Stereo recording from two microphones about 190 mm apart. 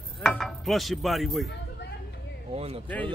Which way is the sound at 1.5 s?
65° left (ahead or behind).